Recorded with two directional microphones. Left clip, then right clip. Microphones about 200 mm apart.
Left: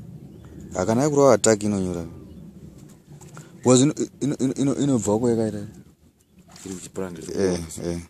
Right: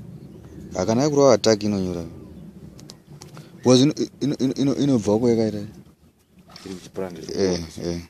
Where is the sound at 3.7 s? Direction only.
Centre (ahead or behind).